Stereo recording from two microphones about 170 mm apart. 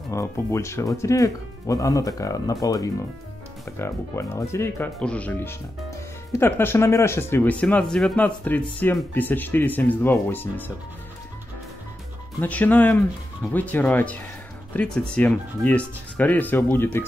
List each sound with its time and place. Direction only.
0.1 s speech: 15° left (ahead or behind)
12.4 s speech: 10° left (ahead or behind)